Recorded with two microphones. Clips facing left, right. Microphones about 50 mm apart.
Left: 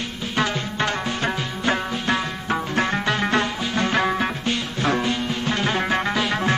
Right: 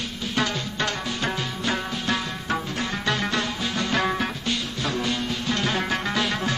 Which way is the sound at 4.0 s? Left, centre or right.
Centre.